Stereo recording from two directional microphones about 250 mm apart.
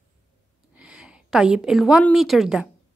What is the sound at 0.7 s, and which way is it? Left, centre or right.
A woman's voice, centre.